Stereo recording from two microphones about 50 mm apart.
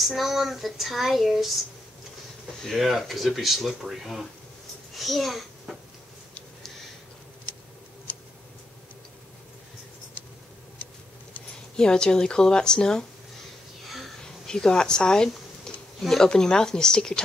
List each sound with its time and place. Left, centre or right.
0.0 s speech: centre
2.6 s a child's voice: centre
11.7 s speech: centre
13.8 s crow: centre
14.2 s a sound: centre
16.0 s speech: centre